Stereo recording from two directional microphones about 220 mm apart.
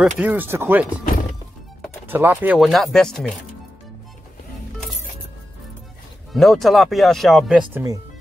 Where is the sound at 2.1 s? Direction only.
10° right (ahead or behind).